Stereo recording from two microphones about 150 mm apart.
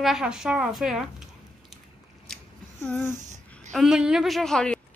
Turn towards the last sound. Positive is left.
turn(degrees=5)  # may be behind; listen again after turning